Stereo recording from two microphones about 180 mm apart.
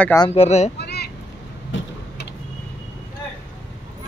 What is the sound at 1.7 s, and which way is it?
Tick-tock, 90° left.